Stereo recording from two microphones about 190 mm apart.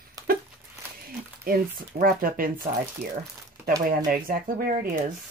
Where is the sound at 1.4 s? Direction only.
50° right (ahead or behind).